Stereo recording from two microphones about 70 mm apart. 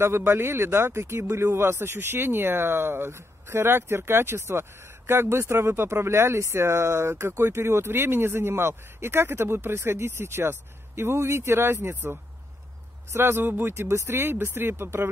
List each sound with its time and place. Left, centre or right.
0.0 s speech: right